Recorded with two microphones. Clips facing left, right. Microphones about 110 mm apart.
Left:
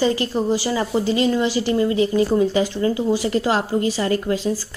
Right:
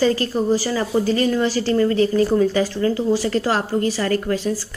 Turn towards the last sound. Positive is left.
turn(degrees=20)  # may be behind; listen again after turning